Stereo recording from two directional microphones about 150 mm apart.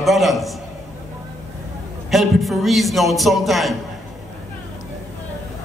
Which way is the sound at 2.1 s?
Centre (ahead or behind).